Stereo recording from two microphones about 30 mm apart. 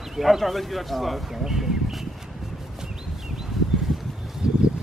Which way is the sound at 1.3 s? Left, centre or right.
Centre.